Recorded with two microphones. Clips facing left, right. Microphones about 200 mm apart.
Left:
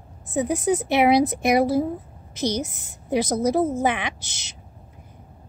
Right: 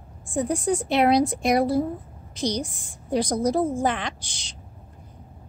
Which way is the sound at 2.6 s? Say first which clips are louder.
Left 2 dB; 20° left (ahead or behind).